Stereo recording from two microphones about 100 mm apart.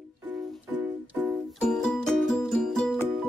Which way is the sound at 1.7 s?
5° left (ahead or behind).